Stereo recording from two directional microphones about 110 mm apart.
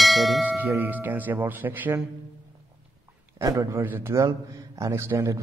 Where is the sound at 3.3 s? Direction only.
30° right (ahead or behind).